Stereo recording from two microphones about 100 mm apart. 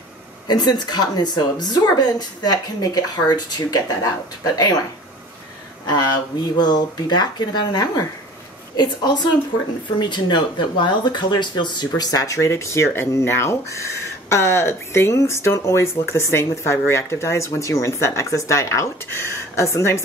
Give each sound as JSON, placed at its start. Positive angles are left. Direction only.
{"t": 0.5, "sound": "speech", "side_deg": 45}
{"t": 5.9, "sound": "speech", "side_deg": 45}